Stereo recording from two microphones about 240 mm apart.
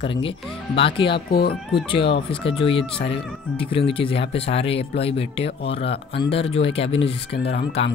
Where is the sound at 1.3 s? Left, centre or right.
Left.